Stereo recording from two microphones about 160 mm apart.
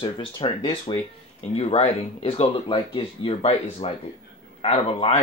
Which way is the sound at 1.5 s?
40° left (ahead or behind).